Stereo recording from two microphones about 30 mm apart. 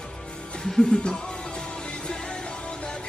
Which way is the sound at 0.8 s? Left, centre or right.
Left.